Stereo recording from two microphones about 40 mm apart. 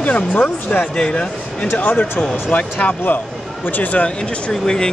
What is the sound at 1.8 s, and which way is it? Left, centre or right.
Speech, left.